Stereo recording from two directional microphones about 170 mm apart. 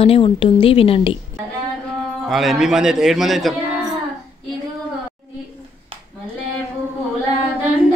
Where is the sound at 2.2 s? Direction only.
Centre (ahead or behind).